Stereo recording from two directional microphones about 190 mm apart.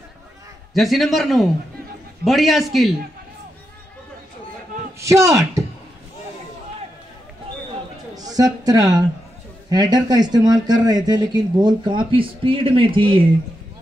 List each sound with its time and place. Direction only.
0.7 s a man's voice: centre (ahead or behind)
5.0 s speech: 15° right (ahead or behind)
8.3 s speech: 20° right (ahead or behind)